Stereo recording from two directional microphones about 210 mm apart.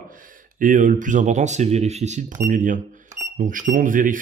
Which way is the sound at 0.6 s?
40° right (ahead or behind).